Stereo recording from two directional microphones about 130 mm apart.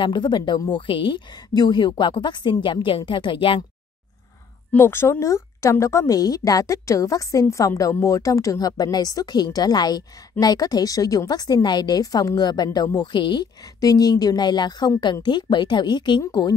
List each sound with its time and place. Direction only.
0.0 s a woman's voice: 35° left (ahead or behind)
4.7 s a woman's voice: 20° left (ahead or behind)